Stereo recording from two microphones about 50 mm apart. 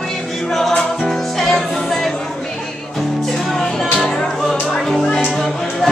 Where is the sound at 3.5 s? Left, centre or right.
Centre.